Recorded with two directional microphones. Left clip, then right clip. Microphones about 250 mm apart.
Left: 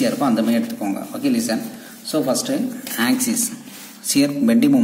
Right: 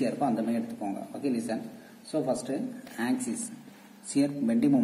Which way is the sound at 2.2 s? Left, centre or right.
Left.